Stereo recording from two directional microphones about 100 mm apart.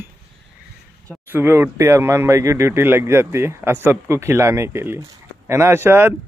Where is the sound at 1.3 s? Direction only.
25° right (ahead or behind).